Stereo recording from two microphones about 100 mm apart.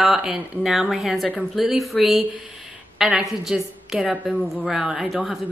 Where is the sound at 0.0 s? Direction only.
5° right (ahead or behind).